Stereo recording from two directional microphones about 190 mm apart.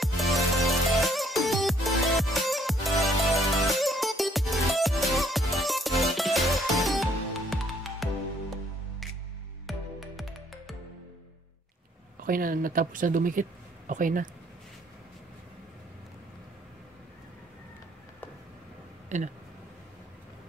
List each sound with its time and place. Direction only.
0.0 s music: centre (ahead or behind)
9.7 s music: centre (ahead or behind)
12.3 s speech: 50° right (ahead or behind)
19.0 s speech: 40° right (ahead or behind)